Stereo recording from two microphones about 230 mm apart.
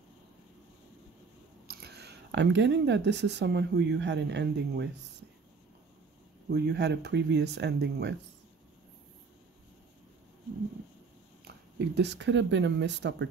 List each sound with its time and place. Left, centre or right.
1.7 s speech: right
6.5 s speech: right
11.4 s speech: right